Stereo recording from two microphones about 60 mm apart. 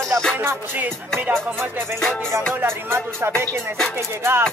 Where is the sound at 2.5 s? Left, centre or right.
Right.